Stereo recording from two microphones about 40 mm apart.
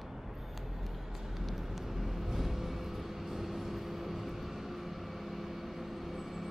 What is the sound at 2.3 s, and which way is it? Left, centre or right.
Vehicle, centre.